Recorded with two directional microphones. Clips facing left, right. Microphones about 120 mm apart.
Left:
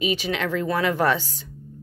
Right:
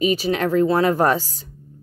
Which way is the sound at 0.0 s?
40° right (ahead or behind).